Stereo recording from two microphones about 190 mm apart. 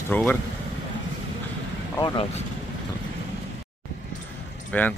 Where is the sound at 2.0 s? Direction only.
25° left (ahead or behind).